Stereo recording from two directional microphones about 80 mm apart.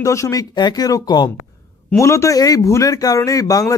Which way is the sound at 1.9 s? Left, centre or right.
Left.